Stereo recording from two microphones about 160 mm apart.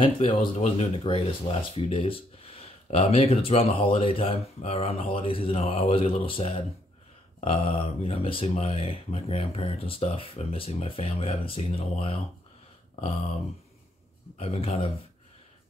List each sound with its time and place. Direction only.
0.0 s speech: 35° left (ahead or behind)
13.0 s a sound: 40° left (ahead or behind)
14.4 s speech: 40° left (ahead or behind)